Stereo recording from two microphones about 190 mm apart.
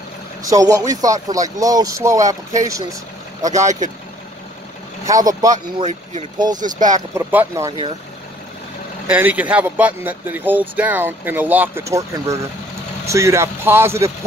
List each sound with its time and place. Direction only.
0.4 s speech: 20° right (ahead or behind)
3.5 s speech: 40° right (ahead or behind)
5.0 s speech: 20° right (ahead or behind)
5.8 s speech: 40° right (ahead or behind)
6.3 s speech: 20° right (ahead or behind)
6.6 s speech: 40° right (ahead or behind)
7.2 s speech: 10° right (ahead or behind)
9.0 s speech: 10° right (ahead or behind)